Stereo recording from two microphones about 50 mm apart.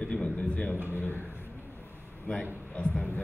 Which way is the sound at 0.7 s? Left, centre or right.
Right.